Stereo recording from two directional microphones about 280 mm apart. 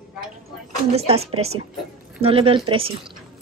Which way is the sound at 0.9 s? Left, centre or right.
Right.